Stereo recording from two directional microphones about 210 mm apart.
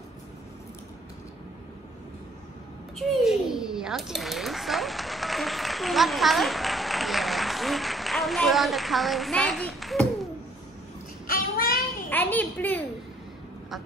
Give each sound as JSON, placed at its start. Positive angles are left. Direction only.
{"t": 3.0, "sound": "a child's voice", "side_deg": 0}
{"t": 11.2, "sound": "child singing", "side_deg": 45}
{"t": 12.1, "sound": "a sound", "side_deg": 10}